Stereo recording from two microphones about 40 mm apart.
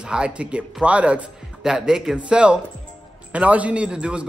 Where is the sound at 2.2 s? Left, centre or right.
Right.